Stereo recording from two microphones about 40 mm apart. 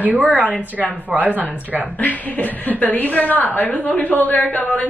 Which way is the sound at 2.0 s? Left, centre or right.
Left.